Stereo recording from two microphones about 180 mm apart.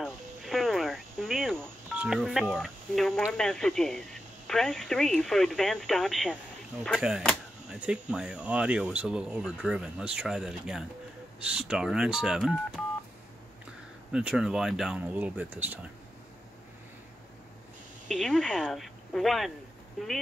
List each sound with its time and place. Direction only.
0.0 s a sound: centre (ahead or behind)
2.0 s speech: centre (ahead or behind)
14.1 s speech: 5° right (ahead or behind)
18.0 s speech: centre (ahead or behind)